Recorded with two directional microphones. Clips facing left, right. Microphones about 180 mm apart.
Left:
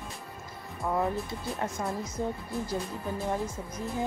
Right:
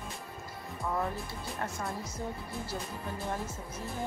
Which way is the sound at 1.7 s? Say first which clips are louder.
Left 5 dB; centre (ahead or behind).